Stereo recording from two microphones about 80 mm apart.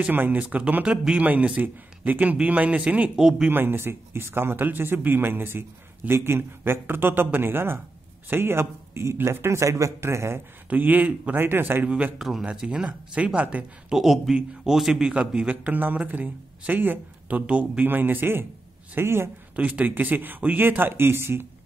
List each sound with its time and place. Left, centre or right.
0.0 s a man's voice: right
3.2 s a man's voice: centre
3.4 s speech: right
10.7 s speech: right
11.9 s a man's voice: centre
13.9 s a man's voice: centre; by 19.3 s right
19.5 s speech: centre